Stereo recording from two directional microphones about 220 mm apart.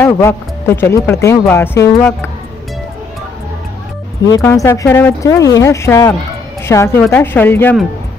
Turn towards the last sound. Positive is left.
turn(degrees=10)  # may be behind; listen again after turning